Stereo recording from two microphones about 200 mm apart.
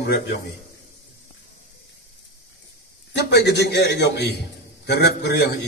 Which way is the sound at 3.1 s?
55° left (ahead or behind).